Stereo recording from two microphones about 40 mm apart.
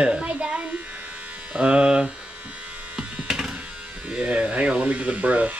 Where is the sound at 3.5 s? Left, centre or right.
Right.